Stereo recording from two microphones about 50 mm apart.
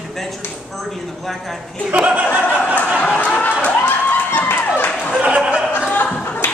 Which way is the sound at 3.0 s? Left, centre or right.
Left.